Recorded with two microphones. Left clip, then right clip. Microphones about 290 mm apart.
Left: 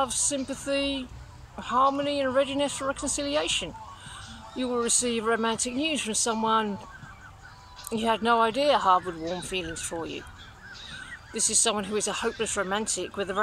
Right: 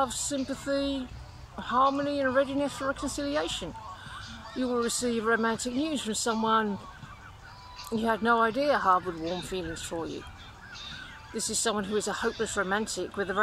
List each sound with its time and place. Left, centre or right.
0.0 s speech: centre
4.6 s speech: centre
7.9 s speech: centre
11.3 s speech: left
11.6 s speech: centre